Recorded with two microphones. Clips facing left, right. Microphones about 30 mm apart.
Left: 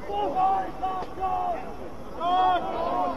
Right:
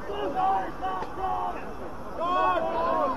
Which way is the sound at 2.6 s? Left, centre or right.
Centre.